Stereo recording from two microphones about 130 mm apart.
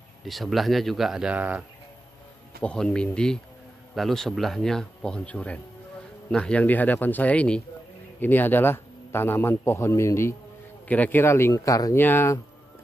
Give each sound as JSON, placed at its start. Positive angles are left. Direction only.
{"t": 0.2, "sound": "a man's voice", "side_deg": 0}
{"t": 2.6, "sound": "a man's voice", "side_deg": 5}